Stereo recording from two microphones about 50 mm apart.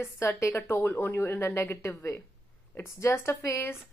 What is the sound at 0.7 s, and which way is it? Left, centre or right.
Speech, left.